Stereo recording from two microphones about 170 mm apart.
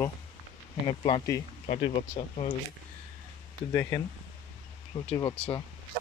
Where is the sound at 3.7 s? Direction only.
15° left (ahead or behind).